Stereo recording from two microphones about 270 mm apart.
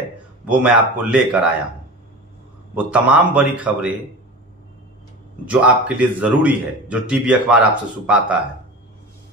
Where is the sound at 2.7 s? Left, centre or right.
Centre.